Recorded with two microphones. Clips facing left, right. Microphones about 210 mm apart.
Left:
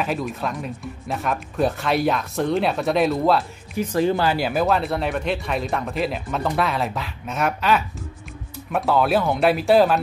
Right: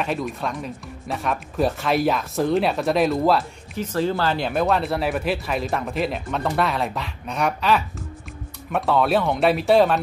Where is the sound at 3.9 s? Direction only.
15° left (ahead or behind).